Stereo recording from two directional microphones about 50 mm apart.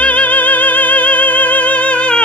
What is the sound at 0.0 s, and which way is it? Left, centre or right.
Music, left.